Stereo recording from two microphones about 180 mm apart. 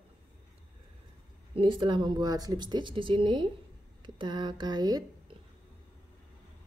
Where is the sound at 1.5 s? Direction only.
30° right (ahead or behind).